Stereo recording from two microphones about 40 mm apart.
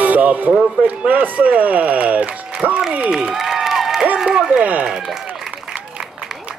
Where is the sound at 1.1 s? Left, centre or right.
Right.